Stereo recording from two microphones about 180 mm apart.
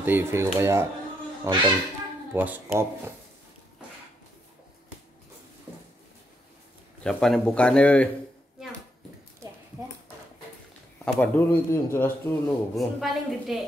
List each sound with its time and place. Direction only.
0.0 s speech: 10° right (ahead or behind)
1.4 s speech: 25° right (ahead or behind)
2.3 s speech: 10° right (ahead or behind)
7.0 s speech: 5° left (ahead or behind)
11.1 s speech: 10° left (ahead or behind)
12.7 s speech: centre (ahead or behind)